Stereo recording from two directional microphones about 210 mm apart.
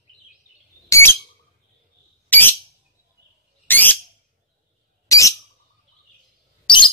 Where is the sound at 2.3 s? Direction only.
10° left (ahead or behind).